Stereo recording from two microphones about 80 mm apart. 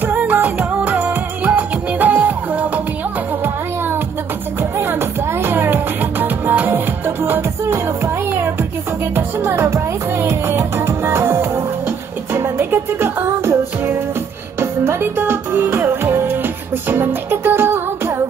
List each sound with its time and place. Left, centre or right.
0.1 s music: right
5.4 s music: right
9.1 s music: right